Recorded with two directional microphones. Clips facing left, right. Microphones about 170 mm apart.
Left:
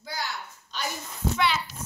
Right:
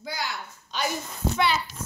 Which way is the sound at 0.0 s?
90° right.